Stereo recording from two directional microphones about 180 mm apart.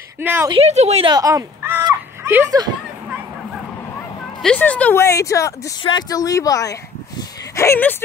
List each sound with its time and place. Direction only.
0.2 s speech: 10° right (ahead or behind)
0.5 s a woman's voice: 35° right (ahead or behind)
1.1 s a sound: 20° right (ahead or behind)
4.4 s speech: 5° left (ahead or behind)